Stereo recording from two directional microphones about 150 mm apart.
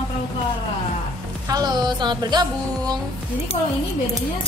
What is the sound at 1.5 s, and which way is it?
Music, 25° right (ahead or behind).